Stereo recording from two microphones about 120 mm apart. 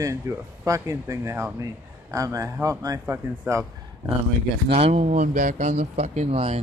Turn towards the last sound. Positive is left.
turn(degrees=-55)  # may be behind; listen again after turning